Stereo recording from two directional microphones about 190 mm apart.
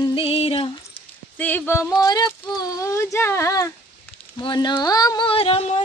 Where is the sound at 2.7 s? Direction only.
15° left (ahead or behind).